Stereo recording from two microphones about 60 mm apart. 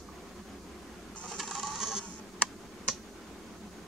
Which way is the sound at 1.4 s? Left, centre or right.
Centre.